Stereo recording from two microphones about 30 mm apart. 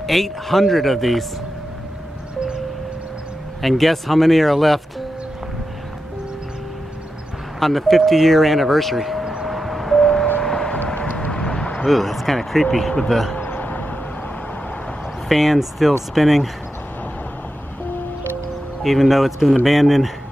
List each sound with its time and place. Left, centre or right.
0.0 s speech: centre
3.6 s speech: centre
7.6 s speech: centre
9.2 s vehicle: right
9.5 s vehicle: centre
10.4 s vehicle: left
11.8 s speech: centre
13.6 s vehicle: left
15.2 s speech: centre
18.8 s speech: centre